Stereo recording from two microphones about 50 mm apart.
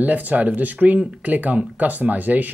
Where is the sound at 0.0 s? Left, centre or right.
Right.